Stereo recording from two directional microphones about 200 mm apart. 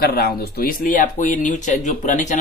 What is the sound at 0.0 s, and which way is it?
Speech, 50° left (ahead or behind).